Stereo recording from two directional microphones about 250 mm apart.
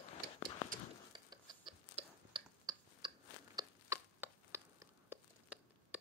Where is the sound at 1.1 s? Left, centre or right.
Centre.